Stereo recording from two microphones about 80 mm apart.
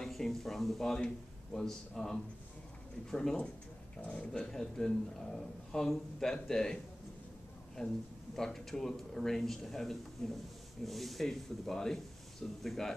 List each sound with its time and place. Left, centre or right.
0.0 s a man's voice: centre
4.0 s speech: centre
4.3 s a man's voice: centre